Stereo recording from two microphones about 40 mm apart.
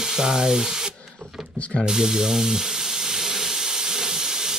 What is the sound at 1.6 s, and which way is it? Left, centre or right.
Speech, left.